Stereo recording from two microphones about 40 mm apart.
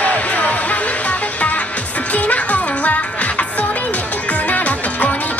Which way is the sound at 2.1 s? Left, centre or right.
Left.